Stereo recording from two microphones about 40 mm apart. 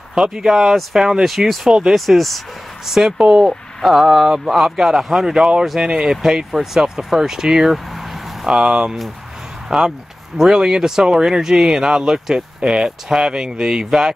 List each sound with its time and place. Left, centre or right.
0.1 s speech: centre
1.7 s speech: centre
2.0 s speech: centre
2.9 s speech: centre
3.8 s speech: centre
6.2 s speech: centre
7.7 s vehicle: centre
8.5 s speech: right
9.7 s speech: centre